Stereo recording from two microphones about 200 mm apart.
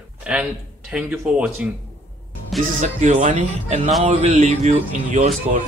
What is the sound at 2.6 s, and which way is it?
Speech, 40° right (ahead or behind).